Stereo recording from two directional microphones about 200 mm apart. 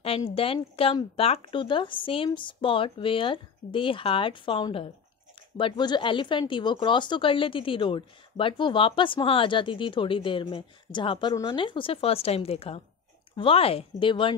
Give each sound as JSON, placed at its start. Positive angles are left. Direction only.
{"t": 0.3, "sound": "speech", "side_deg": 30}